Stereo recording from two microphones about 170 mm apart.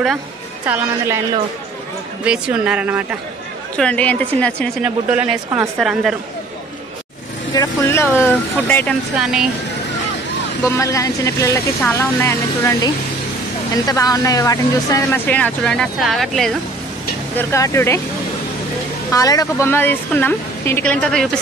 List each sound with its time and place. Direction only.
0.7 s a woman's voice: 15° right (ahead or behind)
2.2 s a woman's voice: 5° right (ahead or behind)
3.7 s speech: 5° left (ahead or behind)
4.8 s speech: 5° right (ahead or behind)
7.5 s speech: 20° left (ahead or behind)
9.2 s speech: 5° right (ahead or behind)
10.6 s speech: 20° left (ahead or behind); by 16.5 s centre (ahead or behind)
17.4 s speech: 15° left (ahead or behind)
19.1 s speech: 20° left (ahead or behind); by 21.3 s 5° left (ahead or behind)